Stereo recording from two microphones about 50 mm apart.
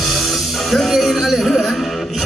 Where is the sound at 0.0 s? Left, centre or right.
Centre.